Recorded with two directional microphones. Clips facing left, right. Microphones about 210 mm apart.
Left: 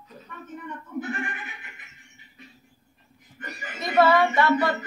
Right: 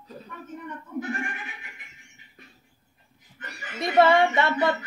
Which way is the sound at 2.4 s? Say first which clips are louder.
Left 3 dB; 50° right (ahead or behind).